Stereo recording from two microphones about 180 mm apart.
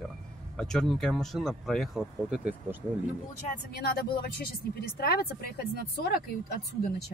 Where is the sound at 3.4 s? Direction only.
55° left (ahead or behind).